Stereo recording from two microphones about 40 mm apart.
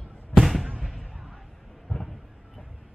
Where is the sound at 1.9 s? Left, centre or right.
Left.